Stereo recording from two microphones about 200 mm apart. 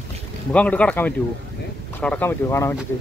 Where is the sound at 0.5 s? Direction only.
5° left (ahead or behind).